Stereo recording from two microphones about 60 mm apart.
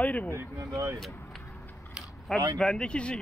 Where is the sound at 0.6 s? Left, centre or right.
Right.